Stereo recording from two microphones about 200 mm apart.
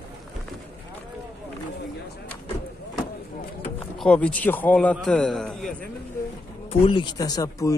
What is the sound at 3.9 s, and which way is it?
A man's voice, 5° left (ahead or behind).